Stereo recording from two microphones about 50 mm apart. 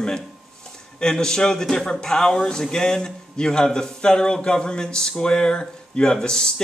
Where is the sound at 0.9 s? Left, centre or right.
Centre.